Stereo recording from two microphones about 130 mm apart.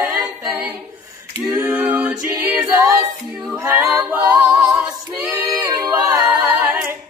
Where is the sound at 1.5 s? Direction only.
20° right (ahead or behind).